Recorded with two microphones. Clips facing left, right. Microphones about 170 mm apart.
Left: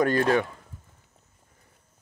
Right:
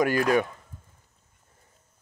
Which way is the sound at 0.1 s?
30° left (ahead or behind).